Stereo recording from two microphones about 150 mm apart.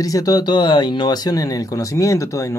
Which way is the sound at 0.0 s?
25° left (ahead or behind).